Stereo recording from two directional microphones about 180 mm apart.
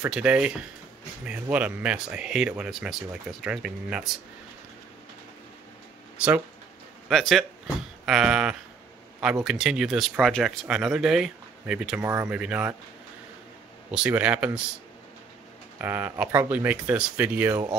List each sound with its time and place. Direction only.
0.0 s speech: 5° right (ahead or behind)
6.1 s speech: 5° right (ahead or behind)
13.9 s speech: 5° right (ahead or behind)
15.8 s speech: 10° right (ahead or behind)